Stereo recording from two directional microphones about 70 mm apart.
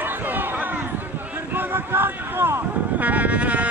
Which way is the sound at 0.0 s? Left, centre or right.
Right.